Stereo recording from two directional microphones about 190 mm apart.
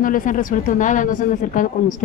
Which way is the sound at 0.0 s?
45° left (ahead or behind).